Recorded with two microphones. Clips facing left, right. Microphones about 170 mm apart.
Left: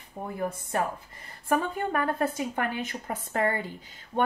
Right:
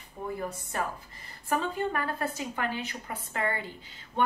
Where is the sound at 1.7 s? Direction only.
50° left (ahead or behind).